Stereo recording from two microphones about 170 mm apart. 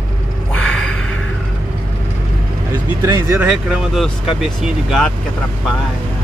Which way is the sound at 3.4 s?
5° right (ahead or behind).